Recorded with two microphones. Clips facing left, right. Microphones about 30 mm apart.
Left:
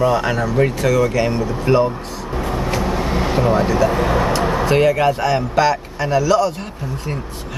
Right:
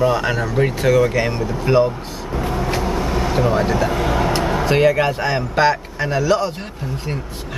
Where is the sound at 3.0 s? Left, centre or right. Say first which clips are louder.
Left 1 dB; centre.